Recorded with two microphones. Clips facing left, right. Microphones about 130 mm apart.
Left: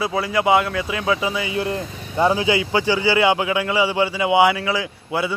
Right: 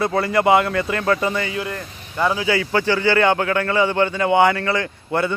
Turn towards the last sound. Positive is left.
turn(degrees=5)  # may be behind; listen again after turning